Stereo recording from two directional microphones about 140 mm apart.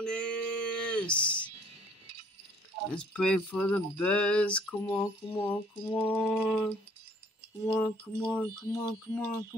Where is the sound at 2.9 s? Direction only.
5° left (ahead or behind).